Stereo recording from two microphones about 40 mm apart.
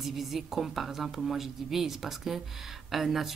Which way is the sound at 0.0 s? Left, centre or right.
Centre.